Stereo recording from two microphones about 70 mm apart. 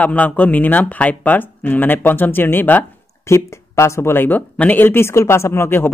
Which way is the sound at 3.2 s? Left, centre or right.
Left.